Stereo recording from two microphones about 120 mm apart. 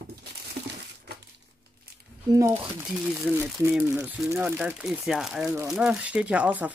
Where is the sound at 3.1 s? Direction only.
15° right (ahead or behind).